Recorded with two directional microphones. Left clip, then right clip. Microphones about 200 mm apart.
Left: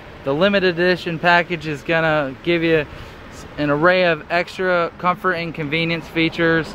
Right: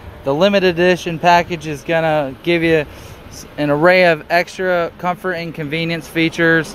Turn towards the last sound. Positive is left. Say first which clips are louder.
# right 4 dB
turn(degrees=-30)  # may be behind; listen again after turning